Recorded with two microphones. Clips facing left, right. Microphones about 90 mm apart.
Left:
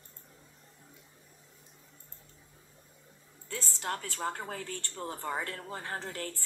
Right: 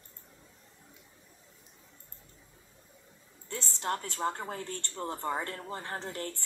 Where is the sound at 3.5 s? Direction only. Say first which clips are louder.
Right 2 dB; 25° right (ahead or behind).